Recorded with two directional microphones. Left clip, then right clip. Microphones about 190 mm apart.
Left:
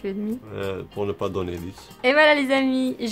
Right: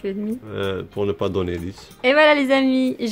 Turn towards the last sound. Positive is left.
turn(degrees=-15)  # may be behind; listen again after turning